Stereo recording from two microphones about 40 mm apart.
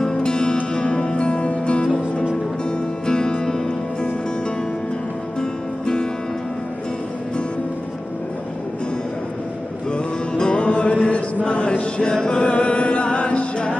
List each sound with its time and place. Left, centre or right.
0.0 s music: centre
5.4 s music: left
9.9 s music: left
11.4 s a sound: left
11.8 s music: left